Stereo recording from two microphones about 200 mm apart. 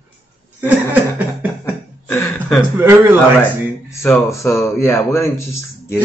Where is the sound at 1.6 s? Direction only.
10° left (ahead or behind).